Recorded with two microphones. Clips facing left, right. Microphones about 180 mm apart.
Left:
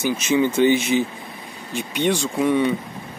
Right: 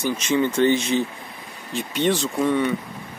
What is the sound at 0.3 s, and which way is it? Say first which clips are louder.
Speech: left 2 dB; 5° left (ahead or behind).